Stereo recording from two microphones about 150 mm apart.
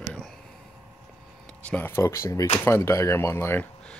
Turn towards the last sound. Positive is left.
turn(degrees=10)  # may be behind; listen again after turning